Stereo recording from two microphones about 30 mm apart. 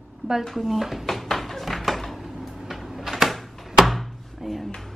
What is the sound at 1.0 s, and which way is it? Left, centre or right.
Music, centre.